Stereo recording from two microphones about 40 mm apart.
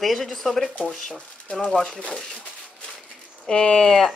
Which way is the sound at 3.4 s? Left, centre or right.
Left.